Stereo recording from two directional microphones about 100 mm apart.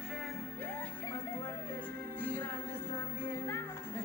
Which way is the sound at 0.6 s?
15° left (ahead or behind).